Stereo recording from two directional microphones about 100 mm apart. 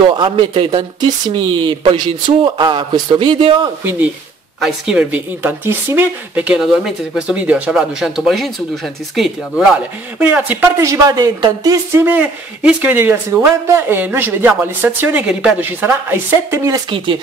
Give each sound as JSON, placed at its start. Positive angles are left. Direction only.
{"t": 0.1, "sound": "speech", "side_deg": -60}
{"t": 4.6, "sound": "speech", "side_deg": -5}
{"t": 7.7, "sound": "speech", "side_deg": 0}
{"t": 10.1, "sound": "speech", "side_deg": -15}
{"t": 10.8, "sound": "speech", "side_deg": -35}
{"t": 12.0, "sound": "speech", "side_deg": -15}
{"t": 16.9, "sound": "speech", "side_deg": -55}